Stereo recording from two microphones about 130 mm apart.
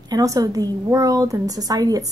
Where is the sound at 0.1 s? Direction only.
25° right (ahead or behind).